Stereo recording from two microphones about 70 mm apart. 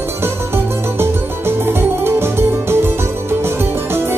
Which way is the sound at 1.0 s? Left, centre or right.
Right.